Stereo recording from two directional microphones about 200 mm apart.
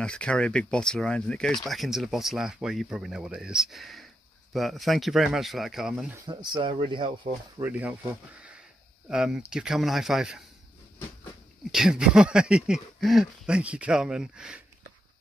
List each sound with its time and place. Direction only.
0.0 s speech: 5° left (ahead or behind)
6.1 s speech: 25° right (ahead or behind)
7.6 s speech: 10° right (ahead or behind)
11.7 s speech: 5° right (ahead or behind)